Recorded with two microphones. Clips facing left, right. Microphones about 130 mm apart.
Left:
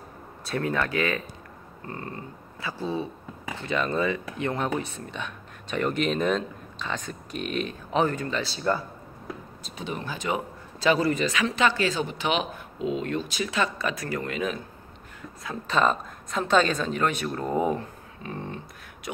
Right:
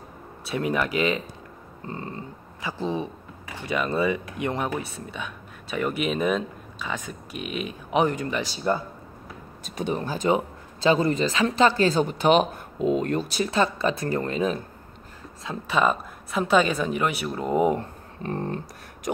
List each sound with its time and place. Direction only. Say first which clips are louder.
0.6 s speech: right 2 dB; 15° right (ahead or behind)
9.9 s speech: right 5 dB; 40° right (ahead or behind)
10.2 s a man's voice: right 7 dB; 25° right (ahead or behind)
15.6 s speech: right 1 dB; 10° right (ahead or behind)
18.2 s a sound: right 6 dB; 45° right (ahead or behind)